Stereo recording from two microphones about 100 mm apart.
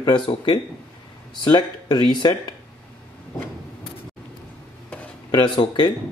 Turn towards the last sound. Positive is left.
turn(degrees=50)  # may be behind; listen again after turning